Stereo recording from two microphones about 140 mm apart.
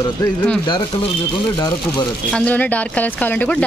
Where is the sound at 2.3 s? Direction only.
10° left (ahead or behind).